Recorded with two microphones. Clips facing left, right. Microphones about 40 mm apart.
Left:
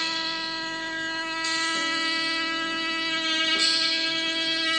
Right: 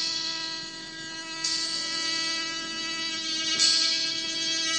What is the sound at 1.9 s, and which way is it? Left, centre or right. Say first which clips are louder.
Wind instrument: left 5 dB; left.